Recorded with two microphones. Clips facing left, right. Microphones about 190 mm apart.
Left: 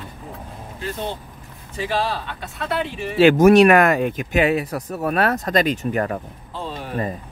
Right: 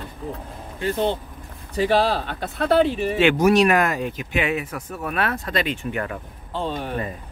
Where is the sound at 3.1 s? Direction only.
40° left (ahead or behind).